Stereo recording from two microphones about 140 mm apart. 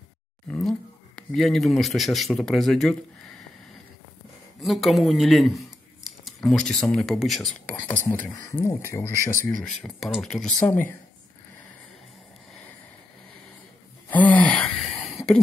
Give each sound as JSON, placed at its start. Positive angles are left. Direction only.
{"t": 0.5, "sound": "speech", "side_deg": 5}
{"t": 4.6, "sound": "speech", "side_deg": 0}
{"t": 6.0, "sound": "a sound", "side_deg": 0}
{"t": 7.0, "sound": "speech", "side_deg": 0}
{"t": 7.6, "sound": "speech", "side_deg": 10}
{"t": 9.6, "sound": "speech", "side_deg": 0}
{"t": 14.0, "sound": "gasp", "side_deg": 10}